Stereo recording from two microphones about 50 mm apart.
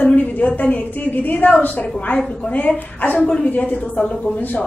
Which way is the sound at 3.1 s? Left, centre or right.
Left.